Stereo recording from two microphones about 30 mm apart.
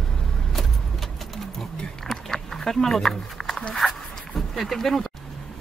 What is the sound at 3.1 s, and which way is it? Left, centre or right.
Speech, centre.